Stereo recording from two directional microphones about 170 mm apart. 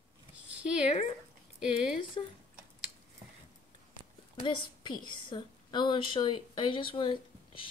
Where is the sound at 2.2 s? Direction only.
35° left (ahead or behind).